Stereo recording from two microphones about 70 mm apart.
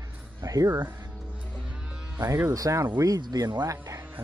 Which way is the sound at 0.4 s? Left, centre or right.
Right.